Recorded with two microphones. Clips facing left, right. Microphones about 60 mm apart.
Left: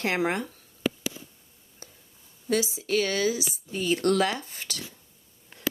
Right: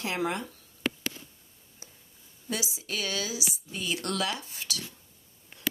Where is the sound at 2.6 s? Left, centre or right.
Left.